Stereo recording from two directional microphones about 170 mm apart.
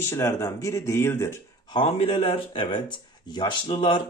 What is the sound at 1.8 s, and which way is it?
A man's voice, 35° left (ahead or behind).